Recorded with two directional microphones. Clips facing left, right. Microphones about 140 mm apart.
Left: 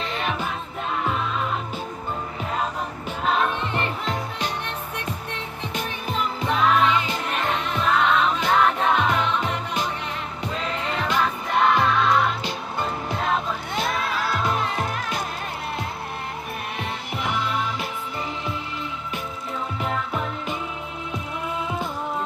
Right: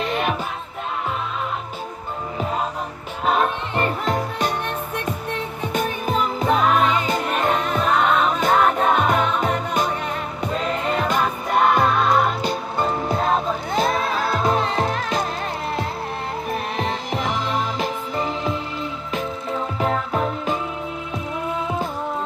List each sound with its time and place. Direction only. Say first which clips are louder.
0.0 s music: right 5 dB; 55° right (ahead or behind)
3.3 s music: right 3 dB; 45° right (ahead or behind); by 15.1 s 30° right (ahead or behind)
16.7 s music: right 6 dB; 35° right (ahead or behind)
19.8 s music: right 6 dB; 40° right (ahead or behind)